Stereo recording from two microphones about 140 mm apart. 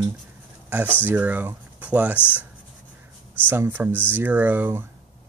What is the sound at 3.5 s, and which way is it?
Speech, 15° right (ahead or behind).